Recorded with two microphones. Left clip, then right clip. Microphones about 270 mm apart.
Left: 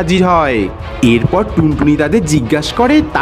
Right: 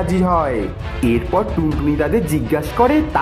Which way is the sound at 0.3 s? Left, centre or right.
Left.